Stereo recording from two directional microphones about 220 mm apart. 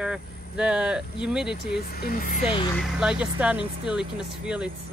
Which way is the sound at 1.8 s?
45° left (ahead or behind).